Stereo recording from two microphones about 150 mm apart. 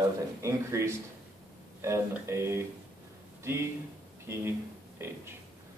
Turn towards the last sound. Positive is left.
turn(degrees=-15)  # may be behind; listen again after turning